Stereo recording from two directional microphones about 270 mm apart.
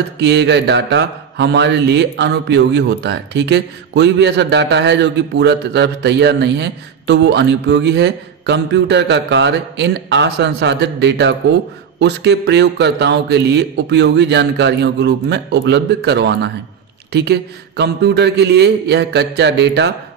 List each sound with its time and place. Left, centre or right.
0.2 s speech: right